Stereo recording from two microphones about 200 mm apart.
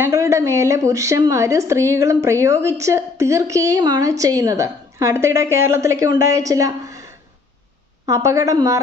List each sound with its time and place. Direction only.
0.0 s a woman's voice: 15° right (ahead or behind)